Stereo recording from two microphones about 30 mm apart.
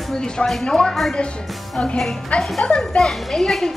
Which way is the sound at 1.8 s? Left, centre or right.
Left.